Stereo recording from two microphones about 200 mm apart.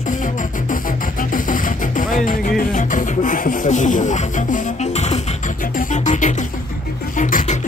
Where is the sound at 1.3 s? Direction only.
40° left (ahead or behind).